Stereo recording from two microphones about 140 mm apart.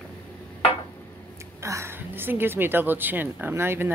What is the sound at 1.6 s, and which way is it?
A woman's voice, 20° right (ahead or behind).